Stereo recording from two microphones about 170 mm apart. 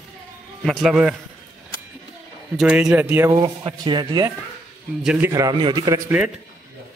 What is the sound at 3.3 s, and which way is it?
Speech, 25° right (ahead or behind).